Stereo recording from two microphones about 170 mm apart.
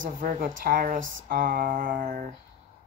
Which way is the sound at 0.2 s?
55° right (ahead or behind).